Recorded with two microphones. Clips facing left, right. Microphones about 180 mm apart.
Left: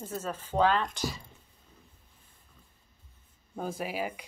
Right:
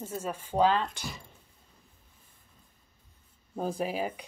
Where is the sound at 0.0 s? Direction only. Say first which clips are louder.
Right 1 dB; 10° right (ahead or behind).